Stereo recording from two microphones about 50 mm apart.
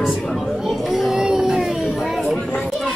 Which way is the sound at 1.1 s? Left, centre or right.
Centre.